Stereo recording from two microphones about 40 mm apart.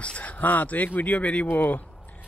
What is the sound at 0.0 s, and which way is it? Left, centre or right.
Speech, left.